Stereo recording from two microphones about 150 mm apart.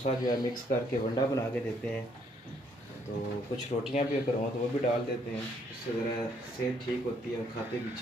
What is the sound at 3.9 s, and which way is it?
Speech, 60° left (ahead or behind).